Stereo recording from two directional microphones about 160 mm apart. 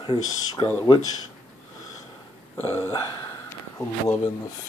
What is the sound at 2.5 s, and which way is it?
Speech, 15° left (ahead or behind).